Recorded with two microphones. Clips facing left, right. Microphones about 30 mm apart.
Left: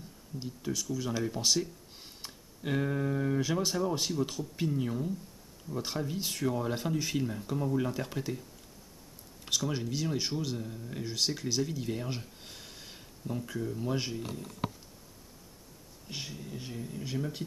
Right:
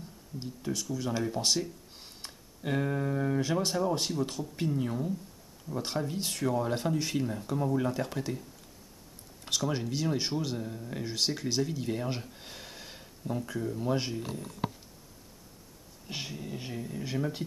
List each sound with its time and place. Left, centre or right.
0.7 s speech: centre
16.1 s speech: centre